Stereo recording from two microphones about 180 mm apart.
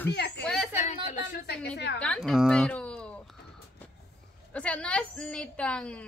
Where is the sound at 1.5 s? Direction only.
70° left (ahead or behind).